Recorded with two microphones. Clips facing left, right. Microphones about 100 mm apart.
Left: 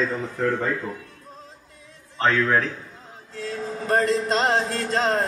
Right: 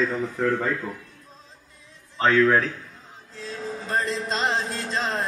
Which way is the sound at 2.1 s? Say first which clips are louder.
Right 2 dB; centre (ahead or behind).